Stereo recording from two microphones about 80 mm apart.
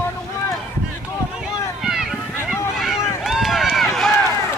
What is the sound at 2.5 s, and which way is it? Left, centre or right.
Run, centre.